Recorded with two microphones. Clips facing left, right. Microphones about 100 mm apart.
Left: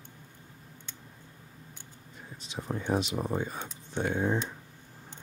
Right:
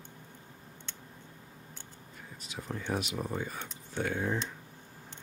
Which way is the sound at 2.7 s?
20° left (ahead or behind).